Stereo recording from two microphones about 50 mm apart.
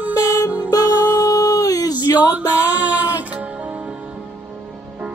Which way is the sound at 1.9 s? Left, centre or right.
Right.